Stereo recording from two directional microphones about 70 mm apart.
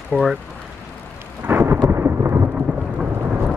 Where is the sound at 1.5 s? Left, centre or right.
Right.